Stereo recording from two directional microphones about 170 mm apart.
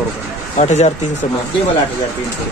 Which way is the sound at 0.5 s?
45° left (ahead or behind).